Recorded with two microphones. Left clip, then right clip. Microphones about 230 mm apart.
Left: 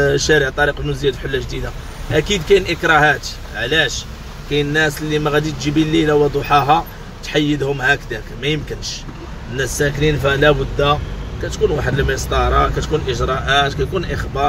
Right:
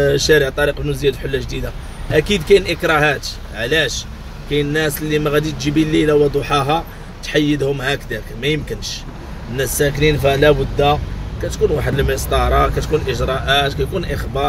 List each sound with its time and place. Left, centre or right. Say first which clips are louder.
0.0 s speech: right 1 dB; centre